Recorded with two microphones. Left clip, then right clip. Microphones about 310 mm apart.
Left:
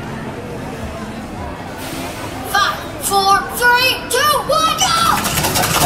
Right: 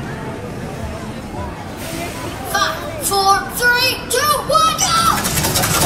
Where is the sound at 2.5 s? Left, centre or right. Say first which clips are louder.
Left 2 dB; centre.